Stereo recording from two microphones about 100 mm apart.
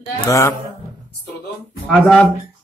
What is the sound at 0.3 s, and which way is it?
Mantra, 30° left (ahead or behind).